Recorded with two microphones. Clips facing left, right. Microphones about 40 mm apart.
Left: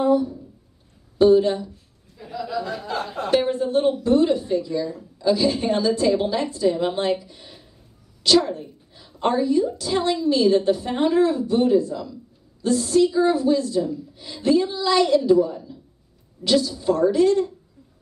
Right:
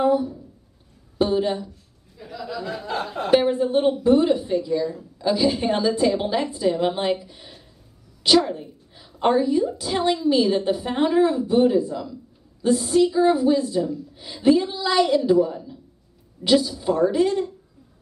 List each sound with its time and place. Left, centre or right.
0.0 s a woman's voice: centre
1.3 s a woman's voice: centre
2.1 s speech: centre
3.2 s a woman's voice: centre